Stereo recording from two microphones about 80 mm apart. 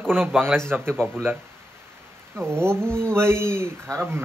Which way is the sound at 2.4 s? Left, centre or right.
Right.